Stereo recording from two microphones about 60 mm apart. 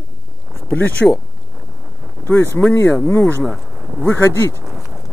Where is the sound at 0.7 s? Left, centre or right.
Left.